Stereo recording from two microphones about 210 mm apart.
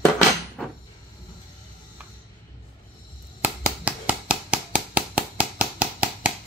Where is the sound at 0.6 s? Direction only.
Centre (ahead or behind).